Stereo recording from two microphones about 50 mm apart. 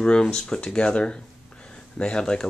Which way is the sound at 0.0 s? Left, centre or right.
Centre.